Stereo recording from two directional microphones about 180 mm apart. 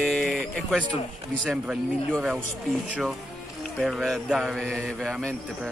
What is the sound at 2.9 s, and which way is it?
A man's voice, centre (ahead or behind).